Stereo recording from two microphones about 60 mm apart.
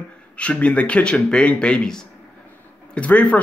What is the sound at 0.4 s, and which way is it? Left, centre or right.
Speech, left.